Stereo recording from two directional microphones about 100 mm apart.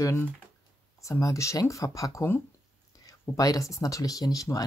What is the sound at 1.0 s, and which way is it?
Speech, 30° left (ahead or behind).